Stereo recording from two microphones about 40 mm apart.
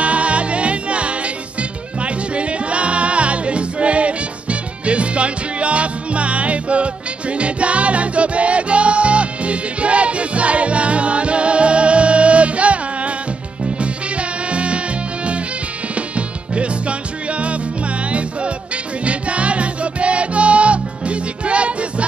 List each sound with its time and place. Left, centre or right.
0.0 s music: right
15.9 s music: right